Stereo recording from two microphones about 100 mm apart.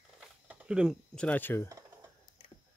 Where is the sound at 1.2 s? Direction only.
15° left (ahead or behind).